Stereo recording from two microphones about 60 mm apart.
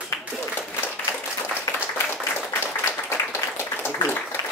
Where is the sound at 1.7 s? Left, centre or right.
Left.